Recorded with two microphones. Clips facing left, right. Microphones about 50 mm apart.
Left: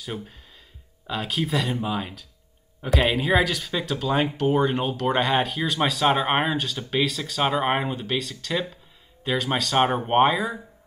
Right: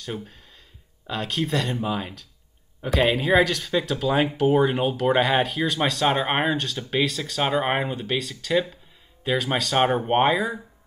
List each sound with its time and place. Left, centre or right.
0.0 s speech: centre